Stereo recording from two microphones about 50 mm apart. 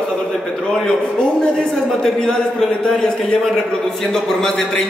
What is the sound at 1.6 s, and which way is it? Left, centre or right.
A man's voice, centre.